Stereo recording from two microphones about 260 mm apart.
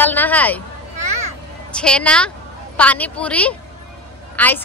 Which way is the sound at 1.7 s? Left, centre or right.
Centre.